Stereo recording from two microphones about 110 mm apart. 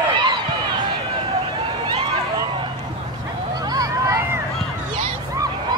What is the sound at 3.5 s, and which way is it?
Vehicle, 35° right (ahead or behind).